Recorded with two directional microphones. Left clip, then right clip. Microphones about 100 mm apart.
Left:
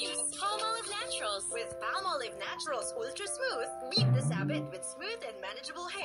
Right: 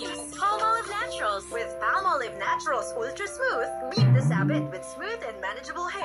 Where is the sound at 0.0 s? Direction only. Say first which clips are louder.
Right 7 dB; 25° left (ahead or behind).